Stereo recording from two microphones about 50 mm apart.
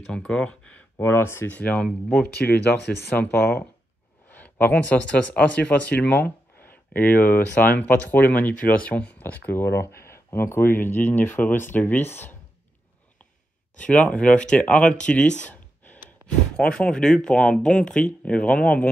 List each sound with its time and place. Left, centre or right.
0.0 s speech: left
0.9 s speech: left
1.5 s speech: left
2.1 s speech: left
3.3 s speech: left
4.3 s speech: left
9.2 s speech: left
11.2 s speech: left
13.7 s speech: left